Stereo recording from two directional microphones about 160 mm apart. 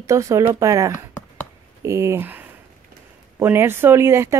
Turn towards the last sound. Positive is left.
turn(degrees=-15)  # may be behind; listen again after turning